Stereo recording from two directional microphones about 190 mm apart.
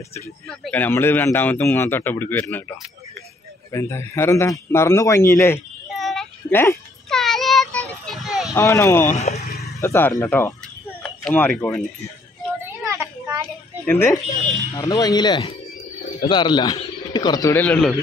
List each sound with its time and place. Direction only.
0.5 s speech: 10° left (ahead or behind)
3.7 s speech: 15° left (ahead or behind)
5.9 s child singing: centre (ahead or behind)
6.5 s a sound: 10° left (ahead or behind)
7.2 s child singing: centre (ahead or behind)
8.1 s a sound: centre (ahead or behind)
8.5 s speech: 15° left (ahead or behind)
9.0 s speech: 35° left (ahead or behind)
9.8 s speech: 15° left (ahead or behind)
12.6 s a sound: 15° right (ahead or behind)
13.8 s speech: 10° left (ahead or behind)